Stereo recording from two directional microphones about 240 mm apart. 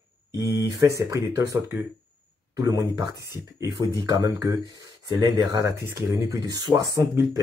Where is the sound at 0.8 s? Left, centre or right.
Centre.